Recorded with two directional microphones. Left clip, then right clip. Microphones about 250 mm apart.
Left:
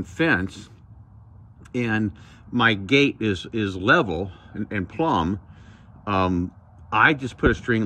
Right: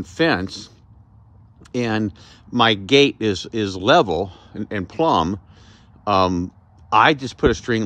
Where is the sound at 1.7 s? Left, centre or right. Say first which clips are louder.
Right 3 dB; centre.